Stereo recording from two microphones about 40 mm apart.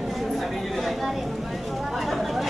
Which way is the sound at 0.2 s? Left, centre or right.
Centre.